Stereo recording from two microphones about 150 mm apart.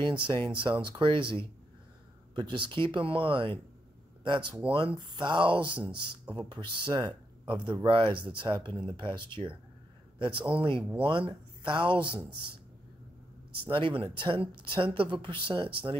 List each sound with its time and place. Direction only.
0.7 s speech: 35° right (ahead or behind)
2.3 s speech: 30° right (ahead or behind)
5.8 s a man's voice: 10° right (ahead or behind)
6.3 s a man's voice: 30° right (ahead or behind)
13.7 s speech: 35° right (ahead or behind)